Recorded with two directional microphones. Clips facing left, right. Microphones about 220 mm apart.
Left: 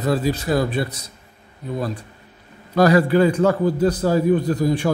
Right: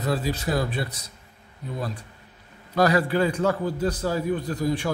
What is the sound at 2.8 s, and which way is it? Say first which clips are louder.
A man's voice: left 6 dB; 45° left (ahead or behind).